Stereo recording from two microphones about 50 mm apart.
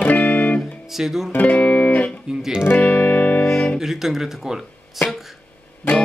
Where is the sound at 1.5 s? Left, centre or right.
Left.